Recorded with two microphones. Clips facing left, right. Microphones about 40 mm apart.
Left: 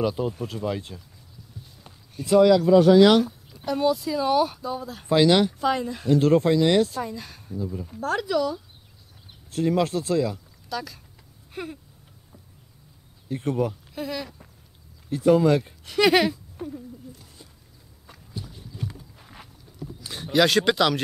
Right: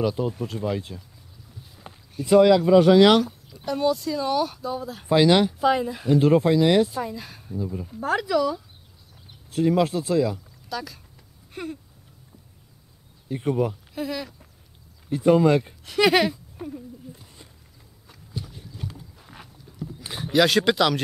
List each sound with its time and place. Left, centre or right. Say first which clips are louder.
0.0 s speech: right 1 dB; centre
2.2 s speech: right 1 dB; centre
3.5 s speech: even; centre
11.5 s a sound: right 1 dB; centre
13.3 s speech: right 1 dB; centre
15.8 s speech: left 1 dB; centre
17.1 s a sound: right 2 dB; right
18.0 s a sound: right 2 dB; centre
20.2 s speech: right 1 dB; centre